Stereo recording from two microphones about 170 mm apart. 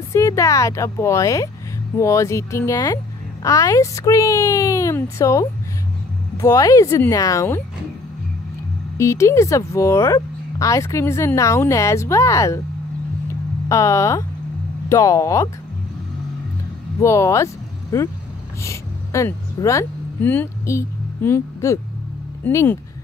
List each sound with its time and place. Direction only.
0.1 s speech: 20° left (ahead or behind)
8.9 s speech: 15° left (ahead or behind)
13.3 s a sound: 20° left (ahead or behind)
14.9 s speech: 20° left (ahead or behind)
17.0 s speech: 15° left (ahead or behind)